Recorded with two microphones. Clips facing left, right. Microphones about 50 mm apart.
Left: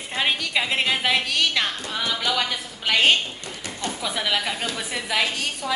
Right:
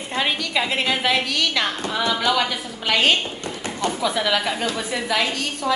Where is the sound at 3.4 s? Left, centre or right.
Right.